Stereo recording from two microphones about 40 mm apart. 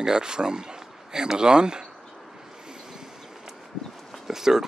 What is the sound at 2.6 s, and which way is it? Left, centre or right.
Vehicle, centre.